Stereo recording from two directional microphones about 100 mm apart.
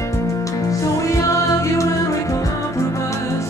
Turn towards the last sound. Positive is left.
turn(degrees=30)  # may be behind; listen again after turning